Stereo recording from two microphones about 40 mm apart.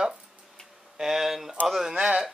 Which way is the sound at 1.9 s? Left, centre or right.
Right.